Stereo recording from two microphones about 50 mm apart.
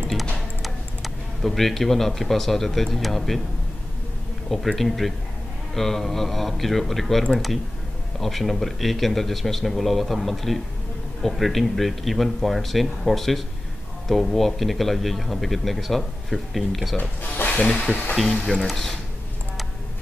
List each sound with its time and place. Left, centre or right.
0.6 s speech: centre
4.6 s a man's voice: centre
17.5 s speech: left
18.5 s speech: centre